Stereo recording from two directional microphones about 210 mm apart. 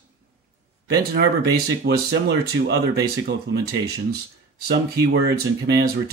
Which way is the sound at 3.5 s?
50° right (ahead or behind).